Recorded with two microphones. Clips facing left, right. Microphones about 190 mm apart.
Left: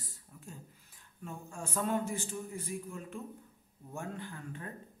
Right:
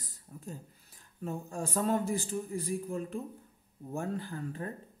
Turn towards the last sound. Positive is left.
turn(degrees=-35)  # may be behind; listen again after turning